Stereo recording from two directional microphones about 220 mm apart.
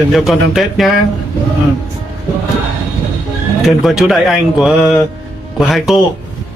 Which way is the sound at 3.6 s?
Centre (ahead or behind).